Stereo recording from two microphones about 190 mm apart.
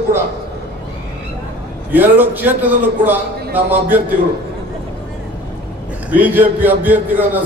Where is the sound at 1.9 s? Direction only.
10° right (ahead or behind).